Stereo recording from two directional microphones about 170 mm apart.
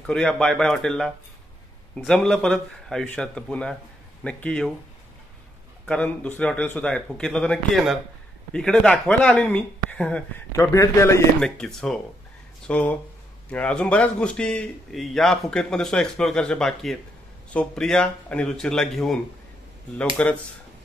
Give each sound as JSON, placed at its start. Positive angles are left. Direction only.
{"t": 0.0, "sound": "a man's voice", "side_deg": 5}
{"t": 5.9, "sound": "speech", "side_deg": 10}
{"t": 10.5, "sound": "speech", "side_deg": 20}
{"t": 11.4, "sound": "a man's voice", "side_deg": 5}
{"t": 20.2, "sound": "speech", "side_deg": 5}